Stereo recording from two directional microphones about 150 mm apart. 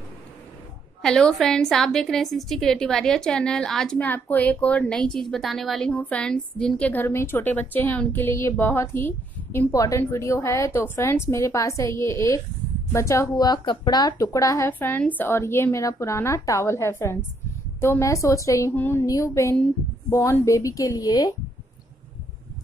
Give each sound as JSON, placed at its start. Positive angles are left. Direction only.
{"t": 1.0, "sound": "a woman's voice", "side_deg": 5}
{"t": 14.7, "sound": "a woman's voice", "side_deg": 10}